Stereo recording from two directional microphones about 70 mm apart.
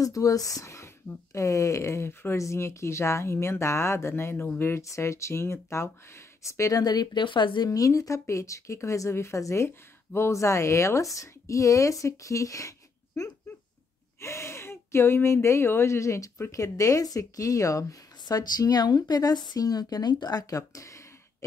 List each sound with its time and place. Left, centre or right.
0.0 s speech: left
6.8 s speech: left
14.2 s speech: left
18.2 s a woman's voice: left